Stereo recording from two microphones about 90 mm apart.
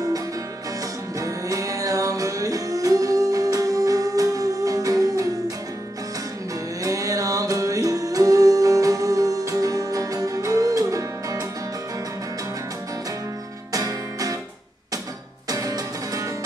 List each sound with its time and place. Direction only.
1.2 s music: 40° right (ahead or behind)
6.8 s music: 40° right (ahead or behind)
13.7 s music: 40° right (ahead or behind)
15.5 s music: 40° right (ahead or behind)